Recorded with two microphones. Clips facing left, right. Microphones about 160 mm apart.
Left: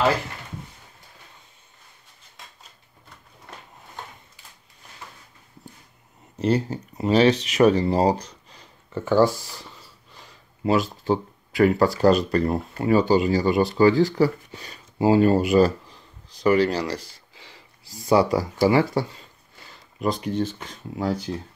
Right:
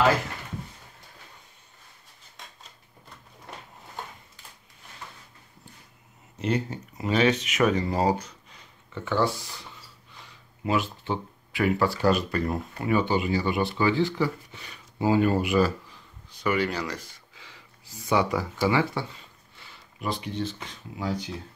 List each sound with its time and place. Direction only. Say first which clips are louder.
6.4 s speech: left 5 dB; 35° left (ahead or behind)